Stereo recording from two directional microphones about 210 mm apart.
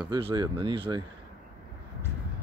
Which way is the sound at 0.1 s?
20° right (ahead or behind).